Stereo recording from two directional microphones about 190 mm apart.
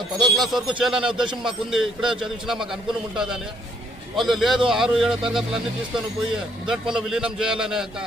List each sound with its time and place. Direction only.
0.2 s a man's voice: centre (ahead or behind)
4.2 s a man's voice: centre (ahead or behind)
6.7 s a man's voice: 5° right (ahead or behind)